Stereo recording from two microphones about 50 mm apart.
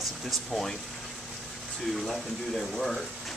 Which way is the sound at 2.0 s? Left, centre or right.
Centre.